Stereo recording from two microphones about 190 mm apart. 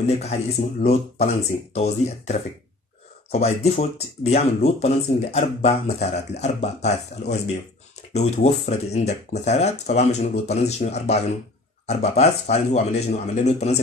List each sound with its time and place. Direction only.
0.0 s speech: 35° left (ahead or behind)